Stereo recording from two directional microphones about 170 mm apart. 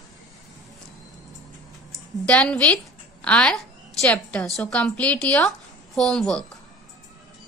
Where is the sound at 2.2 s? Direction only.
5° left (ahead or behind).